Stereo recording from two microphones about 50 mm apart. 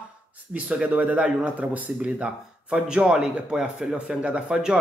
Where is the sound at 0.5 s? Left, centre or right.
Right.